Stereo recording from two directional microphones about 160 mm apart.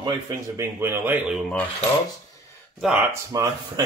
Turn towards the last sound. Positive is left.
turn(degrees=-20)  # may be behind; listen again after turning